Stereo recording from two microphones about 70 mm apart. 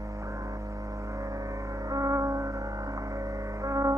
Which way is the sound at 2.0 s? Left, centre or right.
Right.